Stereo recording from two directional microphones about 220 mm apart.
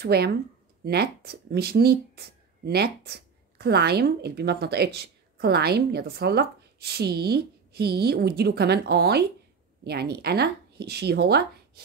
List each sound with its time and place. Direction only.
0.0 s speech: 45° right (ahead or behind)